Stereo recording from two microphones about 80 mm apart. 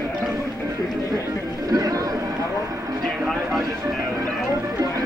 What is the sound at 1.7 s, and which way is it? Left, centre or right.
Speech, right.